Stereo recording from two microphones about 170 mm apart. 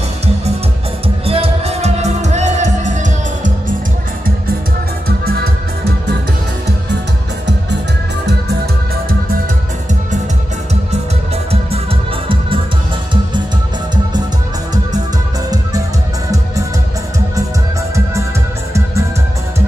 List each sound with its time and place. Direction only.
1.0 s music: 35° right (ahead or behind)
5.0 s music: 65° right (ahead or behind)